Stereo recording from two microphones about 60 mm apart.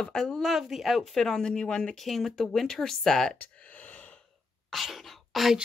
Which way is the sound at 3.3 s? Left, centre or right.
Left.